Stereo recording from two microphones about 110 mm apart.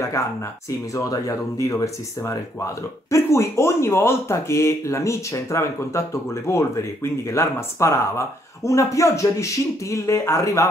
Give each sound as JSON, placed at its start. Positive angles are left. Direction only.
{"t": 0.7, "sound": "speech", "side_deg": 30}